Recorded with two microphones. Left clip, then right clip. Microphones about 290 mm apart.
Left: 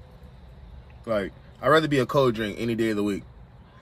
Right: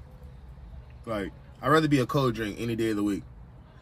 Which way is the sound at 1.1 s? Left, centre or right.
Centre.